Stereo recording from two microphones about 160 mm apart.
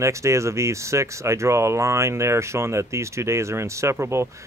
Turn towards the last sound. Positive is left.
turn(degrees=-15)  # may be behind; listen again after turning